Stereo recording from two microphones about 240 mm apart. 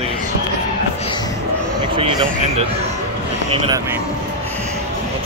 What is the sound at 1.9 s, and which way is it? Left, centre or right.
Speech, right.